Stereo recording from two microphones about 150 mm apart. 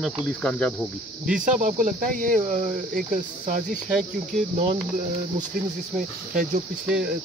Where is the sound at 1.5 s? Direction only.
55° right (ahead or behind).